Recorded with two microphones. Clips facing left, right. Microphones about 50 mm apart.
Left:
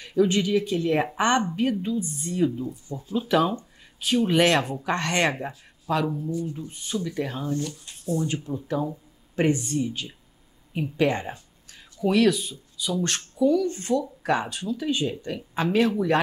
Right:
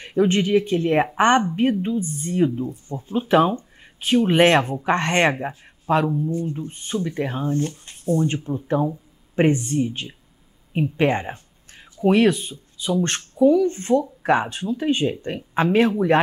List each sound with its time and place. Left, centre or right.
0.0 s speech: right